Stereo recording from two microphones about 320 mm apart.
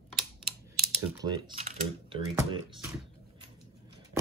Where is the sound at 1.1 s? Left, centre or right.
Centre.